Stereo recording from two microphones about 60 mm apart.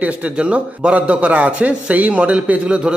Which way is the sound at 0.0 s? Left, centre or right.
Right.